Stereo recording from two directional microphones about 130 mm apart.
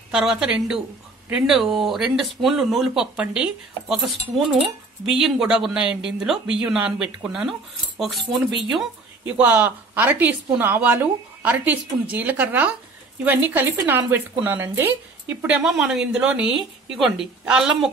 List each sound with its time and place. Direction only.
0.1 s speech: 5° right (ahead or behind)
9.4 s speech: 15° right (ahead or behind)